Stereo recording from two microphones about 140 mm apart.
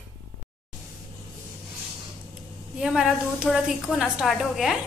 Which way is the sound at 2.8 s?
5° right (ahead or behind).